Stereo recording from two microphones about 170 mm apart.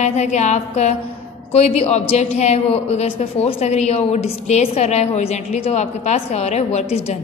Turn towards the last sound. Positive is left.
turn(degrees=40)  # may be behind; listen again after turning